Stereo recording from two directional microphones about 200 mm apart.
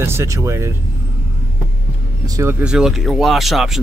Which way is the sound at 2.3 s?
15° right (ahead or behind).